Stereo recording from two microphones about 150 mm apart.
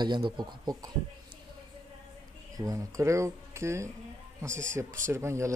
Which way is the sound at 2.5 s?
20° right (ahead or behind).